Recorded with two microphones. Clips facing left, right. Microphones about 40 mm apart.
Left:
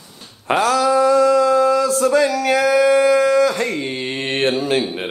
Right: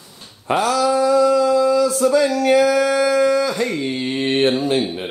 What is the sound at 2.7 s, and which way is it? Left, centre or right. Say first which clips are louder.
Howl: left 3 dB; left.